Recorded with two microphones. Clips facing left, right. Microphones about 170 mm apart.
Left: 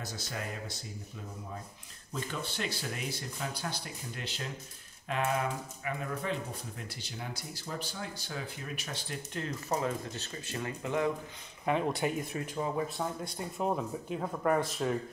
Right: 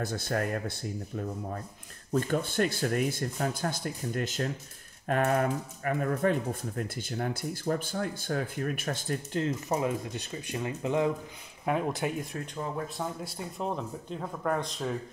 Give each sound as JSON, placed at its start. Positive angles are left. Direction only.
{"t": 0.0, "sound": "speech", "side_deg": -55}
{"t": 9.7, "sound": "speech", "side_deg": -15}
{"t": 11.6, "sound": "speech", "side_deg": -5}